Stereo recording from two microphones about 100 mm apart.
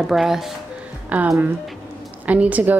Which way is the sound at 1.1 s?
15° right (ahead or behind).